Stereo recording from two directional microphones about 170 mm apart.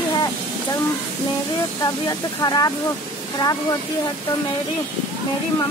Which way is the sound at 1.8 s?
20° left (ahead or behind).